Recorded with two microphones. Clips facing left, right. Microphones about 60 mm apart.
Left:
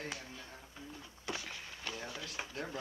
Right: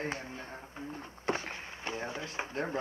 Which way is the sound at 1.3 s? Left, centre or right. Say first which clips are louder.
Right 8 dB; right.